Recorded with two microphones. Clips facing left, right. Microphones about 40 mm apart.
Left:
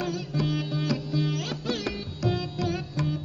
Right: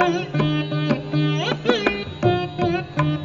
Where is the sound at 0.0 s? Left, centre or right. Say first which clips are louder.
Right 9 dB; right.